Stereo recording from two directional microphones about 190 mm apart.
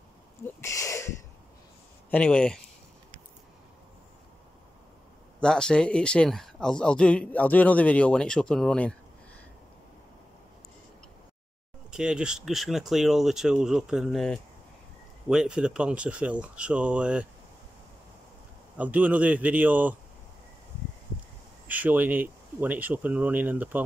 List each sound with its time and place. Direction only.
0.6 s a sound: 15° left (ahead or behind)
2.0 s speech: 5° left (ahead or behind)
5.4 s speech: 5° left (ahead or behind)
11.9 s speech: 5° right (ahead or behind)
18.8 s speech: 10° right (ahead or behind)
21.6 s speech: 10° right (ahead or behind)